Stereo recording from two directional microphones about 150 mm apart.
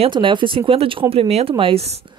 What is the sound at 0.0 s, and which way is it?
Speech, 35° right (ahead or behind).